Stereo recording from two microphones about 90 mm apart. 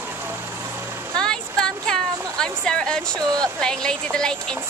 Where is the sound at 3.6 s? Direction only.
10° left (ahead or behind).